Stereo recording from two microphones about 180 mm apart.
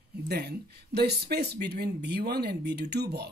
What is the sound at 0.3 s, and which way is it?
Speech, 65° right (ahead or behind).